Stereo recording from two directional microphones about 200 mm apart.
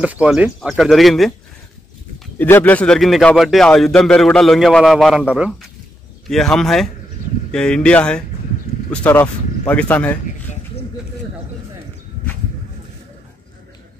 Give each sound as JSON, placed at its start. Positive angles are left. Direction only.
{"t": 0.0, "sound": "a man's voice", "side_deg": -5}
{"t": 2.3, "sound": "a man's voice", "side_deg": 10}
{"t": 10.5, "sound": "a sound", "side_deg": 35}